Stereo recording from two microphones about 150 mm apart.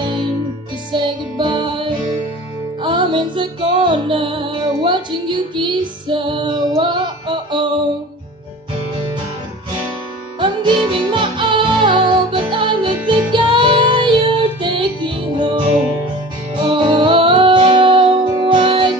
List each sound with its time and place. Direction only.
0.9 s music: 30° right (ahead or behind)
10.4 s music: 30° right (ahead or behind)
16.6 s music: 35° right (ahead or behind)